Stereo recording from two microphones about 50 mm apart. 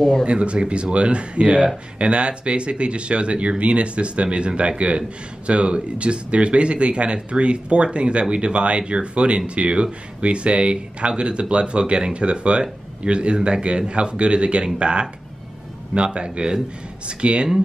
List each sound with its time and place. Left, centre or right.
0.2 s speech: right